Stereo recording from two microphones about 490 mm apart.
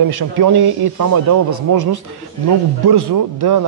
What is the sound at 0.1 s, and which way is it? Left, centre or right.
Speech, right.